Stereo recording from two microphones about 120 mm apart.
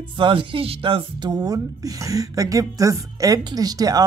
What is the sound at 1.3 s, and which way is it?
A woman's voice, 30° right (ahead or behind).